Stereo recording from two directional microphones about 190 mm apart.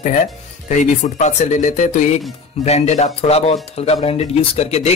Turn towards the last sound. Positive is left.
turn(degrees=35)  # may be behind; listen again after turning